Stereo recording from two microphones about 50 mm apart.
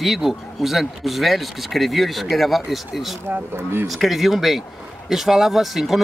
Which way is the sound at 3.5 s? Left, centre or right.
Right.